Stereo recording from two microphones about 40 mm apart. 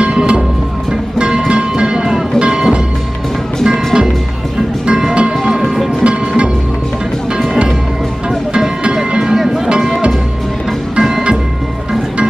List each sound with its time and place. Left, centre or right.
0.0 s music: right
5.1 s music: right
5.5 s music: centre
6.0 s music: right
8.5 s music: centre
11.0 s music: centre